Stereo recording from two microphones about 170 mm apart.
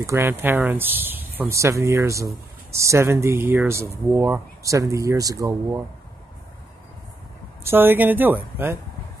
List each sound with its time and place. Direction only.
0.0 s speech: 15° right (ahead or behind)
7.6 s speech: 10° right (ahead or behind)